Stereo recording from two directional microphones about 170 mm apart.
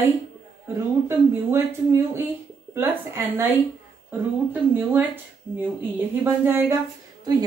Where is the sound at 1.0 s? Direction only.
15° right (ahead or behind).